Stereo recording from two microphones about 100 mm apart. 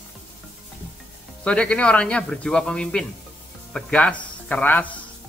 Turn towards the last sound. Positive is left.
turn(degrees=15)  # may be behind; listen again after turning